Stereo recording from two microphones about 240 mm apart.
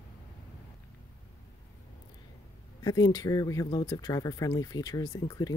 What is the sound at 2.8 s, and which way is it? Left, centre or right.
Speech, centre.